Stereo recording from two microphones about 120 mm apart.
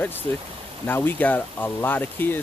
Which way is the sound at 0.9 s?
15° left (ahead or behind).